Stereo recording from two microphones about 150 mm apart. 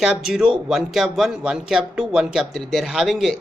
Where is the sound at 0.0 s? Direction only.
5° right (ahead or behind).